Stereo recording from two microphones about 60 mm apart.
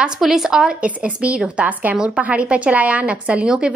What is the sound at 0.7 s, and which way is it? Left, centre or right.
A woman's voice, right.